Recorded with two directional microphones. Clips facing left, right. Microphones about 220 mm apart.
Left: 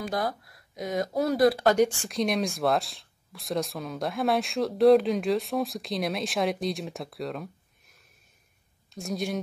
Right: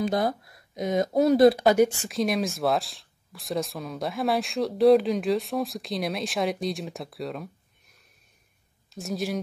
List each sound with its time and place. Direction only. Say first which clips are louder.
0.0 s speech: right 5 dB; 25° right (ahead or behind)
1.7 s speech: right 2 dB; 5° right (ahead or behind)
8.9 s speech: right 1 dB; centre (ahead or behind)